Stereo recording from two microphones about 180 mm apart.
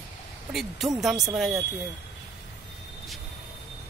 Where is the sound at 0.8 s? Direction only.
Centre (ahead or behind).